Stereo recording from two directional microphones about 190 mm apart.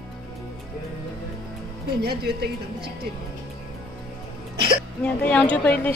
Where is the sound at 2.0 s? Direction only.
55° right (ahead or behind).